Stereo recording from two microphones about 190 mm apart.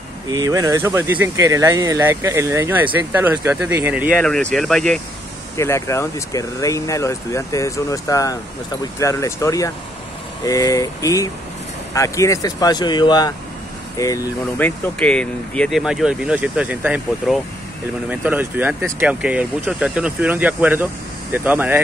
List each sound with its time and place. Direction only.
0.3 s speech: 20° right (ahead or behind)
4.2 s speech: 5° left (ahead or behind)
5.6 s speech: 15° left (ahead or behind)
15.0 s speech: 5° left (ahead or behind)